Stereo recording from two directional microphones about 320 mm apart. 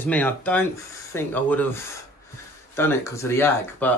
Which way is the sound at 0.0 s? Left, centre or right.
Centre.